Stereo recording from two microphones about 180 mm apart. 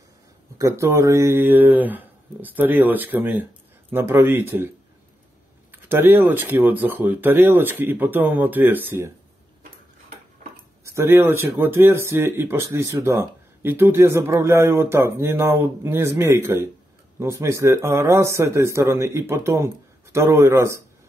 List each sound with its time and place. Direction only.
0.6 s speech: 15° right (ahead or behind)
5.7 s speech: 10° right (ahead or behind)
10.8 s speech: 15° right (ahead or behind)